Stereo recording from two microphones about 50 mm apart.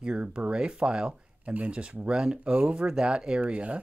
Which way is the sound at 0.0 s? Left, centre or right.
Right.